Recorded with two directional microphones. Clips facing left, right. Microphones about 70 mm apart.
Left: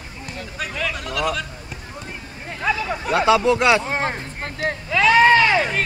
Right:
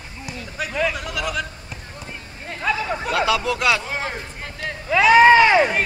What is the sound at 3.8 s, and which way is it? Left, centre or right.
Speech, left.